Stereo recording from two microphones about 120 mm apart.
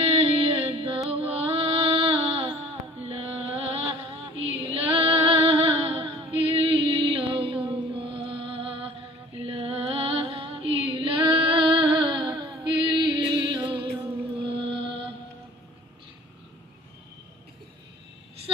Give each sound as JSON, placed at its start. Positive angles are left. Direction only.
{"t": 0.0, "sound": "music", "side_deg": -50}
{"t": 4.6, "sound": "female singing", "side_deg": -55}
{"t": 9.4, "sound": "music", "side_deg": -50}